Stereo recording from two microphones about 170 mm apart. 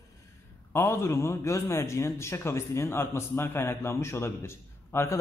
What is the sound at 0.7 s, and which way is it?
Speech, 15° left (ahead or behind).